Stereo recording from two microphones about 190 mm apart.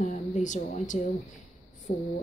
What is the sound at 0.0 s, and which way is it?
Speech, 40° left (ahead or behind).